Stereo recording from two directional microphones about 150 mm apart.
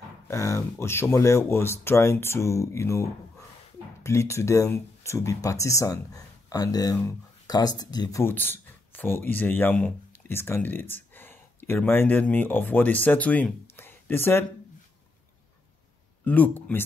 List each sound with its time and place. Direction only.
0.3 s speech: 20° left (ahead or behind)
8.2 s speech: 15° left (ahead or behind)
16.3 s speech: 10° left (ahead or behind)